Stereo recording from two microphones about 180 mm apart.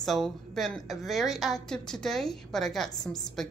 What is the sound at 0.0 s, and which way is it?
A woman's voice, centre (ahead or behind).